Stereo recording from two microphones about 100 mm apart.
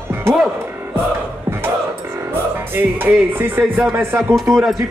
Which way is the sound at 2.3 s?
20° right (ahead or behind).